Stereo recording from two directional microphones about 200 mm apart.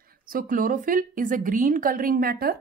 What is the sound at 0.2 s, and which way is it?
A woman's voice, 45° right (ahead or behind).